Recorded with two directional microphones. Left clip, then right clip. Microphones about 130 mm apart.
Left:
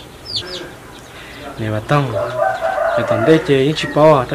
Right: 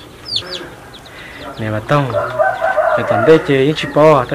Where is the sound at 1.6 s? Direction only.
Centre (ahead or behind).